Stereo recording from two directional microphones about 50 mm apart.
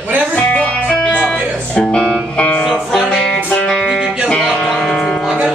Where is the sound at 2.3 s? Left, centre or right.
Left.